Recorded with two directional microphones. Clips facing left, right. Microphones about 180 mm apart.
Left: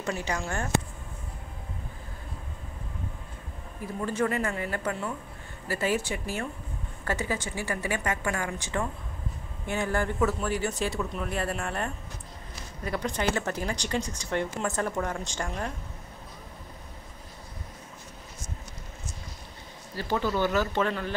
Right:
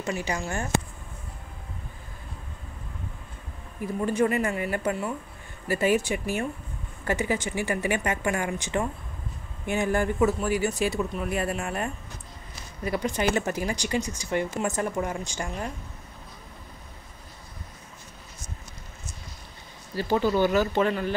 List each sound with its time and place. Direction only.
0.0 s speech: 10° right (ahead or behind)
3.8 s speech: 15° right (ahead or behind)
20.0 s speech: 15° right (ahead or behind)